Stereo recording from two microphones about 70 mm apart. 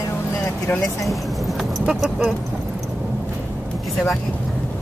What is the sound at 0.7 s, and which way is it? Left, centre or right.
Speech, left.